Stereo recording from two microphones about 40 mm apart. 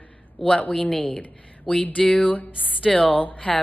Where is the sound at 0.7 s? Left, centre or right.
Left.